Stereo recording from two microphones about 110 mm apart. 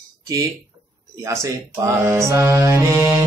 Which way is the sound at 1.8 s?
25° right (ahead or behind).